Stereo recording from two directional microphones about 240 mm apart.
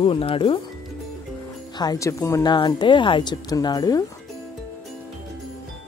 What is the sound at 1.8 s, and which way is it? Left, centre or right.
Speech, centre.